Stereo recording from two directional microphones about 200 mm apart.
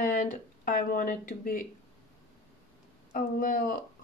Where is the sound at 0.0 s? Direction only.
40° left (ahead or behind).